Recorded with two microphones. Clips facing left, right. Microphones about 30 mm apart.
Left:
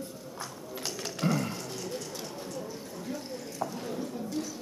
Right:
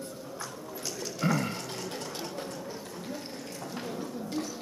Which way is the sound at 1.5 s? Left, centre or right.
Right.